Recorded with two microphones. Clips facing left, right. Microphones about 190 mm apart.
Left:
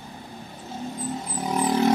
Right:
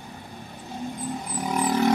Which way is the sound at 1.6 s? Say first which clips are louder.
Left 1 dB; 15° left (ahead or behind).